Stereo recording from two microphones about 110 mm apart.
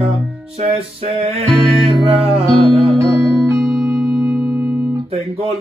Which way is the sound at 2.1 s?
65° right (ahead or behind).